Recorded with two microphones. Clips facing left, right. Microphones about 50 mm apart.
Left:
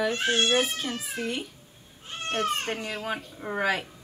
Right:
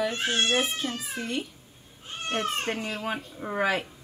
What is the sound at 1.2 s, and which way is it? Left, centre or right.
Speech, centre.